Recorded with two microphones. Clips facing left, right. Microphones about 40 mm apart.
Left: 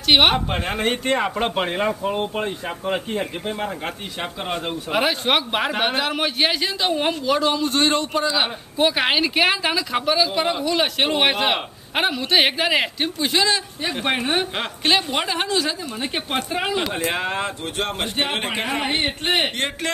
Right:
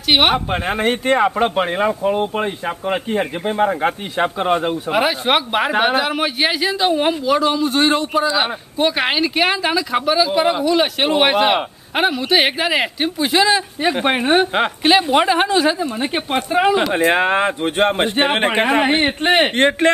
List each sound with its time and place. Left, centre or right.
0.1 s speech: centre
3.4 s speech: right
4.9 s speech: centre
14.8 s speech: centre
16.9 s speech: right